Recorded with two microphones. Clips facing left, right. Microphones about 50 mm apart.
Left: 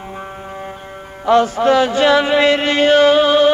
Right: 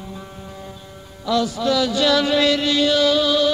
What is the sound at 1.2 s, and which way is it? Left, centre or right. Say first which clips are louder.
Chant: left 7 dB; left.